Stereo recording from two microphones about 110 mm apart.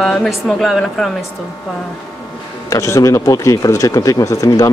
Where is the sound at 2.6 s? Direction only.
30° left (ahead or behind).